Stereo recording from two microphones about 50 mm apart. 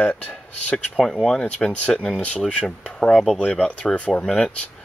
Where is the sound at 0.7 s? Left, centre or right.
Centre.